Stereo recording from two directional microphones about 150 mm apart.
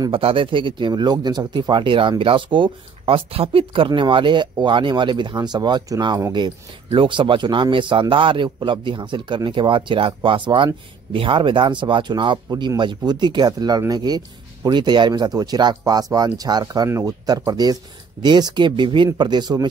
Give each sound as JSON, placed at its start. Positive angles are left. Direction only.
{"t": 0.1, "sound": "speech", "side_deg": -35}